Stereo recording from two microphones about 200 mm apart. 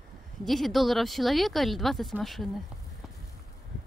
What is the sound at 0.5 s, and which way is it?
Speech, centre (ahead or behind).